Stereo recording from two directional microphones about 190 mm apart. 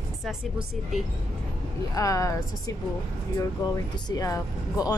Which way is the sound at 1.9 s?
15° left (ahead or behind).